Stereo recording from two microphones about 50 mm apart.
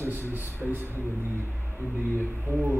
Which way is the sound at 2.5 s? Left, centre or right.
Right.